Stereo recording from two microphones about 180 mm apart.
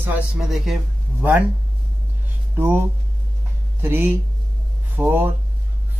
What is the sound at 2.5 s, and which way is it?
Speech, 10° right (ahead or behind).